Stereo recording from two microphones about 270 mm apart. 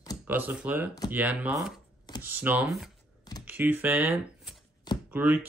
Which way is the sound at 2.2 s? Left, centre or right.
Centre.